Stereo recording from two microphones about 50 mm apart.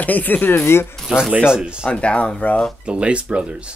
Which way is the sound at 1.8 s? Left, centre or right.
Left.